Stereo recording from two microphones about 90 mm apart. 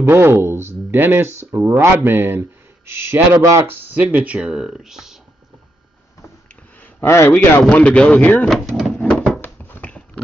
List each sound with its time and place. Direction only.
0.1 s speech: 25° right (ahead or behind)
3.6 s speech: 20° right (ahead or behind); by 5.2 s 5° right (ahead or behind)
7.1 s speech: 25° left (ahead or behind)
7.7 s a man's voice: 15° left (ahead or behind)
8.5 s vehicle: centre (ahead or behind)
9.1 s a sound: centre (ahead or behind)
9.4 s dog: 20° left (ahead or behind)